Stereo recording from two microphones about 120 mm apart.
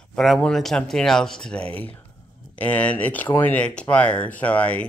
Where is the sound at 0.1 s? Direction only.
5° left (ahead or behind).